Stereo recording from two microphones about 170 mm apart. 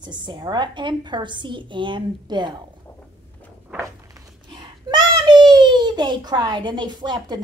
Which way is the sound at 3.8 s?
25° right (ahead or behind).